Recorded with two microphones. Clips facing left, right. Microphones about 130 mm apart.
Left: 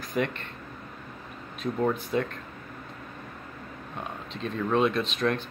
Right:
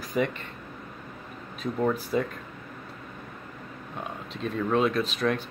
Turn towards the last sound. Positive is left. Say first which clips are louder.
# right 1 dB
turn(degrees=-5)  # may be behind; listen again after turning